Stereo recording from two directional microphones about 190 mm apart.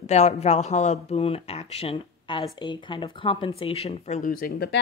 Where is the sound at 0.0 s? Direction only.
35° left (ahead or behind).